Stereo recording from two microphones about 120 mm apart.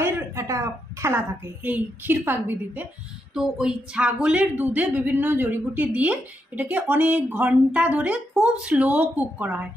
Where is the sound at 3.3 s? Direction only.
5° right (ahead or behind).